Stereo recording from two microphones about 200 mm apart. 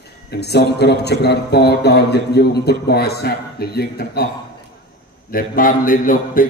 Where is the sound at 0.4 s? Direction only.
55° left (ahead or behind).